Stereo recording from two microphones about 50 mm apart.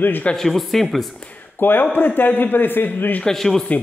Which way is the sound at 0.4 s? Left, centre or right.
Centre.